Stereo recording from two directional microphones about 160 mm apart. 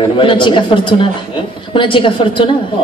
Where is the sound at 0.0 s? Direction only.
30° left (ahead or behind).